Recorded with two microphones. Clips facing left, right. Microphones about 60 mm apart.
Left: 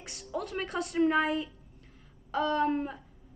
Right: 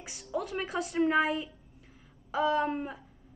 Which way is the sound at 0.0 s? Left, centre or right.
Centre.